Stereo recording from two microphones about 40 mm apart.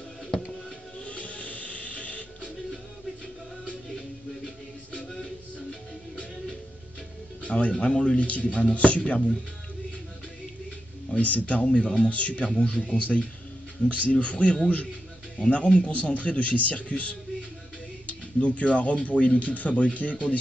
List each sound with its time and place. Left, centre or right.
1.0 s music: left
5.0 s music: centre
7.4 s speech: left
11.1 s speech: left
14.2 s speech: left